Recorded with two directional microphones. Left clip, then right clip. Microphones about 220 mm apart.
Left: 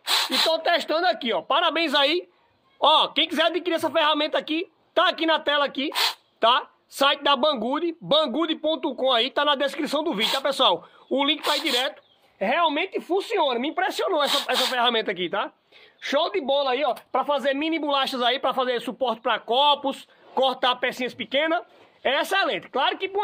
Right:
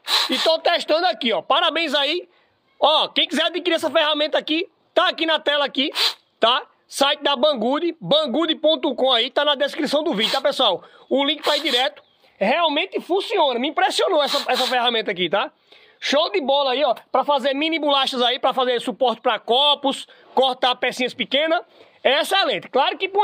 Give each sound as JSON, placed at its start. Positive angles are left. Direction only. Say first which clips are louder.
{"t": 0.0, "sound": "a sound", "louder": "right 3 dB", "side_deg": 0}
{"t": 0.5, "sound": "a man's voice", "louder": "right 4 dB", "side_deg": -40}
{"t": 12.4, "sound": "a man's voice", "louder": "right 3 dB", "side_deg": -45}